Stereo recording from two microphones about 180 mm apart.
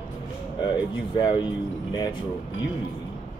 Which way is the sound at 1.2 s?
25° left (ahead or behind).